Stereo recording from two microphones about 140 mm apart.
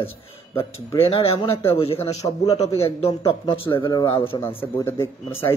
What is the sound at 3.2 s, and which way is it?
Speech, 35° left (ahead or behind).